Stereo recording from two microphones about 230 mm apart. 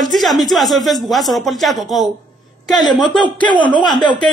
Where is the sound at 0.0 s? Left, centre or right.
Centre.